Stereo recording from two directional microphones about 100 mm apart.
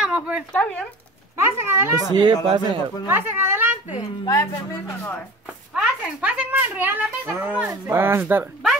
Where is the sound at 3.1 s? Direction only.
20° right (ahead or behind).